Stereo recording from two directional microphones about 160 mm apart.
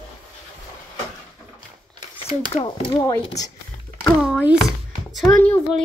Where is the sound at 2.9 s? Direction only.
20° left (ahead or behind).